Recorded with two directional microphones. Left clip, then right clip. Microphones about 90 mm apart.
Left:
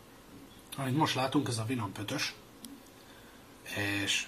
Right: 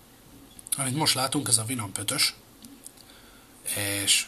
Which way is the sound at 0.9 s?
45° right (ahead or behind).